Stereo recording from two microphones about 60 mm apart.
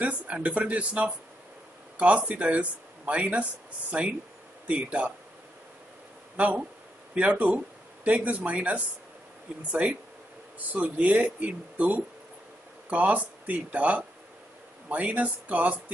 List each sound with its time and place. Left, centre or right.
0.0 s speech: right
6.3 s speech: right